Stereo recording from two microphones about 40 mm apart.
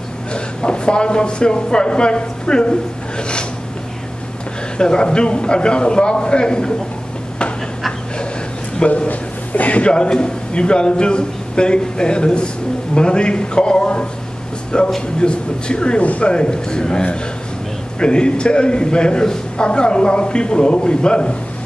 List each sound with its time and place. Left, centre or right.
0.3 s speech: left
4.7 s a man's voice: left
8.8 s a man's voice: left
16.0 s speech: left
16.3 s a man's voice: left